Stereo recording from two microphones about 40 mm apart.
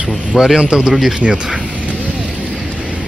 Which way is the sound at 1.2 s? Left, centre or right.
Right.